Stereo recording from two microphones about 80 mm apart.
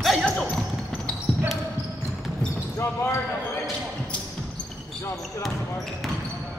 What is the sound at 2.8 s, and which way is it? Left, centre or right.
Basketball bounce, left.